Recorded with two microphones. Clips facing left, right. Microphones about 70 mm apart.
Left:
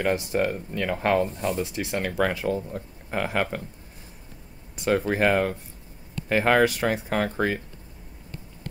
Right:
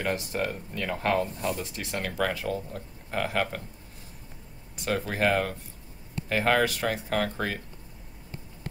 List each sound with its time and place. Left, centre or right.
0.0 s speech: centre
4.8 s speech: left